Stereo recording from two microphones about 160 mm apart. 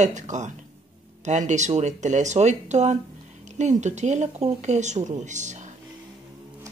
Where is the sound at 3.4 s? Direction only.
50° right (ahead or behind).